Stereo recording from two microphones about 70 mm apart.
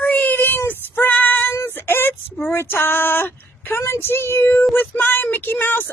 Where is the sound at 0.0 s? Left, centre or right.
Left.